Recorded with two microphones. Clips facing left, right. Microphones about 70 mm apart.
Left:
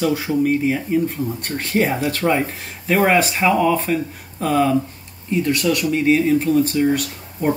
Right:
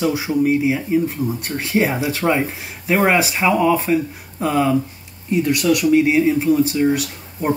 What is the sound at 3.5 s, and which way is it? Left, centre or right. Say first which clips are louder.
Speech: right 2 dB; right.